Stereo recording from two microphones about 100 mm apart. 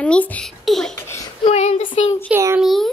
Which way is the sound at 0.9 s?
25° left (ahead or behind).